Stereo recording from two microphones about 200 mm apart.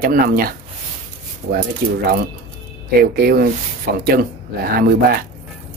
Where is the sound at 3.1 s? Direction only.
50° right (ahead or behind).